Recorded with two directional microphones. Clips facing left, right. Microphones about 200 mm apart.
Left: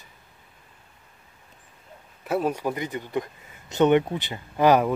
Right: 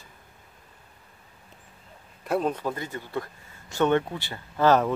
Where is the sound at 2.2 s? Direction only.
5° left (ahead or behind).